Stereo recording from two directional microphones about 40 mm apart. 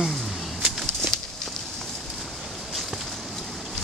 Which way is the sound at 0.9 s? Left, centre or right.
Centre.